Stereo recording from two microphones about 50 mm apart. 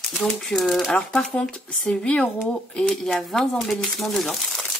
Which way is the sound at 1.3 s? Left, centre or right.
Centre.